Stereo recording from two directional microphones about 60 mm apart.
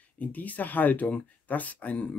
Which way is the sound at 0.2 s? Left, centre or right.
Left.